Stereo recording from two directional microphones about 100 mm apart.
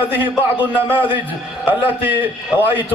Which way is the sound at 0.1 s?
20° right (ahead or behind).